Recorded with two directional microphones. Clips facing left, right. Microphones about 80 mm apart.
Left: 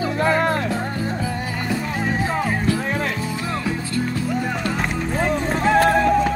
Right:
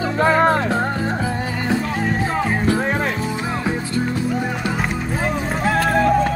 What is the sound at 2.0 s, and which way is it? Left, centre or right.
Music, centre.